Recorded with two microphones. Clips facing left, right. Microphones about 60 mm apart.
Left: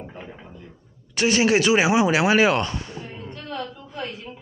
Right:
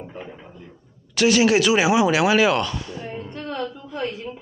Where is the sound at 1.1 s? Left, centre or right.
Left.